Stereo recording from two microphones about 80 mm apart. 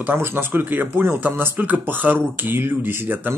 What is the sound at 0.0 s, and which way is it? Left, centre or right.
Speech, right.